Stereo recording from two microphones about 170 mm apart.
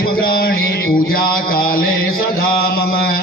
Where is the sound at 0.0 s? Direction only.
60° left (ahead or behind).